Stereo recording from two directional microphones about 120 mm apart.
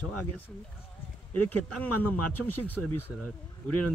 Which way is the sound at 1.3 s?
15° left (ahead or behind).